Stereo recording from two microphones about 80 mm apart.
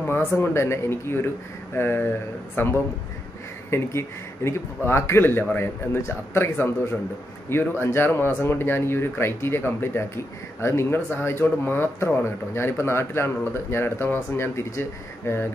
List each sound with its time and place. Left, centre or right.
0.0 s speech: left